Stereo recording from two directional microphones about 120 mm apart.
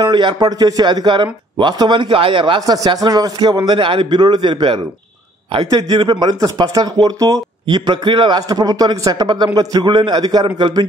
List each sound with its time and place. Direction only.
0.0 s a man's voice: 40° right (ahead or behind)
2.6 s a man's voice: 30° right (ahead or behind)